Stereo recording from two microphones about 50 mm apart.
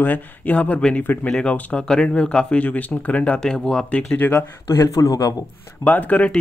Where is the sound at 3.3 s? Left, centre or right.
Centre.